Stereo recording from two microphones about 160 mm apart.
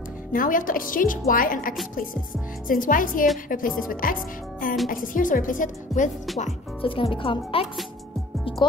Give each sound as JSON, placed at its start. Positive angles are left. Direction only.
{"t": 0.3, "sound": "speech", "side_deg": 60}
{"t": 6.8, "sound": "speech", "side_deg": 35}
{"t": 8.5, "sound": "music", "side_deg": 35}